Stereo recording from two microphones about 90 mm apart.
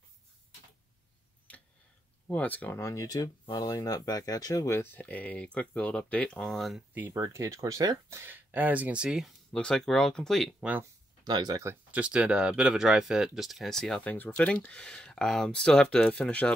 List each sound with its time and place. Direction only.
2.2 s speech: 20° left (ahead or behind)
2.8 s speech: 35° left (ahead or behind)
4.7 s speech: 25° left (ahead or behind); by 6.8 s 5° left (ahead or behind)
6.9 s speech: 20° right (ahead or behind)
7.2 s speech: 35° right (ahead or behind)
8.2 s speech: 20° right (ahead or behind)
9.5 s speech: 10° left (ahead or behind)
11.2 s speech: 45° right (ahead or behind)
11.9 s speech: 10° right (ahead or behind); by 14.0 s 5° left (ahead or behind)
14.0 s speech: 20° left (ahead or behind)